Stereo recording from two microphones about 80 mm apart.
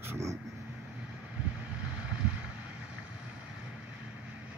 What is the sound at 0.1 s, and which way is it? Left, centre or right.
Speech, right.